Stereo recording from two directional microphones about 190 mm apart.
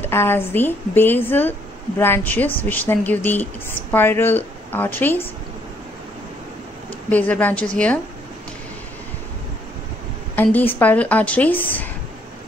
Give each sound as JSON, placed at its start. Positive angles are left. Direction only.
{"t": 0.0, "sound": "speech", "side_deg": 10}
{"t": 7.1, "sound": "speech", "side_deg": 10}
{"t": 10.3, "sound": "speech", "side_deg": 10}